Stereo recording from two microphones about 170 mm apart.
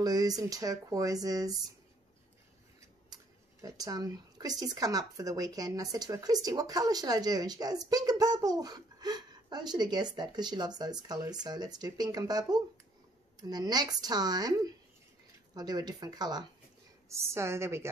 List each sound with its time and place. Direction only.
0.0 s speech: 20° right (ahead or behind)
3.6 s a woman's voice: 20° right (ahead or behind)